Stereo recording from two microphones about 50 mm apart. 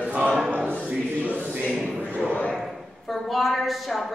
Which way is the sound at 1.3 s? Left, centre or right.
Right.